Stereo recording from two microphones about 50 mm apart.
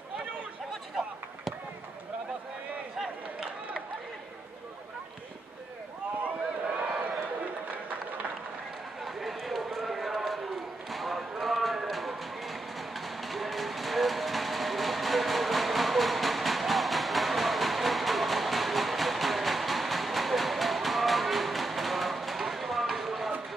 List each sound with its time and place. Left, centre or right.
9.0 s run: centre
10.9 s basketball bounce: centre
13.2 s train: centre